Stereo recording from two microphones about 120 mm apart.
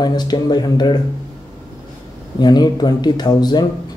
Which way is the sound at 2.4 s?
35° left (ahead or behind).